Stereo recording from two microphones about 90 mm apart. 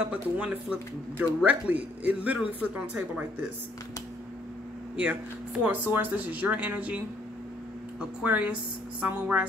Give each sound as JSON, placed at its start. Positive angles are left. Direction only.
{"t": 0.1, "sound": "speech", "side_deg": -20}
{"t": 5.7, "sound": "speech", "side_deg": -25}
{"t": 8.2, "sound": "a woman's voice", "side_deg": -15}